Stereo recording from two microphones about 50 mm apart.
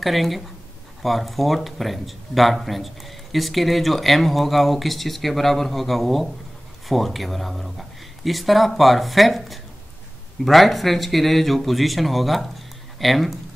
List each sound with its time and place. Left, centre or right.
0.0 s speech: centre